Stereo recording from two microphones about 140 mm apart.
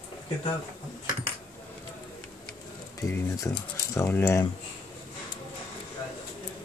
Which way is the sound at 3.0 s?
20° left (ahead or behind).